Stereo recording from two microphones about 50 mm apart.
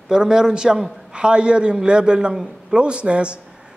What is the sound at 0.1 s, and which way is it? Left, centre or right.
A man's voice, centre.